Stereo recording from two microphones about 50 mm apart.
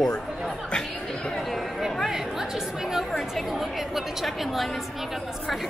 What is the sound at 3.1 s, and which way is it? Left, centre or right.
Chatter, centre.